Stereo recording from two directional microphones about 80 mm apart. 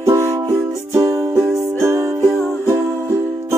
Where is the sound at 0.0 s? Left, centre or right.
Right.